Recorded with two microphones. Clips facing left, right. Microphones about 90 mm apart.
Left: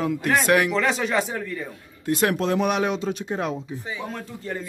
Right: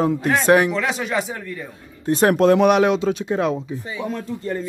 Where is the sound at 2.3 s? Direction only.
65° right (ahead or behind); by 3.3 s 90° right.